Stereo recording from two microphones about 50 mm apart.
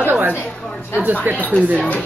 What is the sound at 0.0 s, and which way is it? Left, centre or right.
Chatter, right.